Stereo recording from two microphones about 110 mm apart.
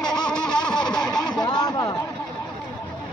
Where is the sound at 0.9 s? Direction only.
5° left (ahead or behind).